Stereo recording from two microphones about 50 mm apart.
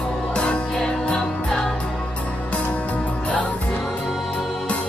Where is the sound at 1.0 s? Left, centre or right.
Centre.